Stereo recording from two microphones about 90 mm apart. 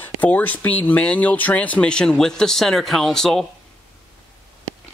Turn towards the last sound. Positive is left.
turn(degrees=5)  # may be behind; listen again after turning